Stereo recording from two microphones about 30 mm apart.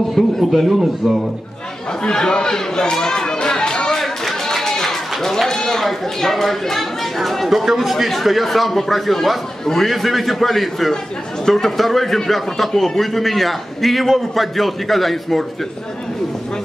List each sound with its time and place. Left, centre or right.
0.4 s a man's voice: centre
0.7 s speech: centre
2.0 s chatter: left
4.0 s a sound: centre
6.2 s speech: centre
7.4 s a man's voice: centre